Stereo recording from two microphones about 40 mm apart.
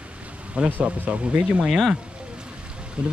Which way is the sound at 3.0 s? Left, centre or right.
Right.